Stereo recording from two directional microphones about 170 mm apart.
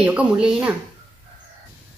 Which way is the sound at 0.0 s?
5° right (ahead or behind).